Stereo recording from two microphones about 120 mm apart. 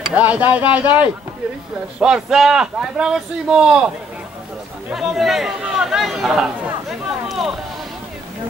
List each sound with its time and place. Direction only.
0.1 s speech: 15° right (ahead or behind)